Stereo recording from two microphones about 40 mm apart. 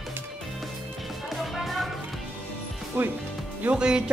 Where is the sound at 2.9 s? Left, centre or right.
Right.